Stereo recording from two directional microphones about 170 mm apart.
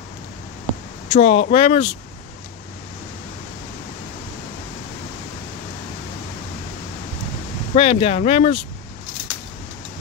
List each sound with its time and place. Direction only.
1.0 s speech: 35° left (ahead or behind)
7.7 s speech: 35° left (ahead or behind)